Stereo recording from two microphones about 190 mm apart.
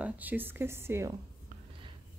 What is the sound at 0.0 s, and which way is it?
Speech, 10° right (ahead or behind).